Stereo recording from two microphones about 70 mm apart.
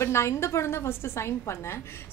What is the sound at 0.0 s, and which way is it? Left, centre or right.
A woman's voice, left.